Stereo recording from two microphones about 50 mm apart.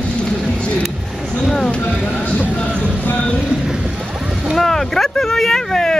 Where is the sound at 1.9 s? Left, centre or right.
Centre.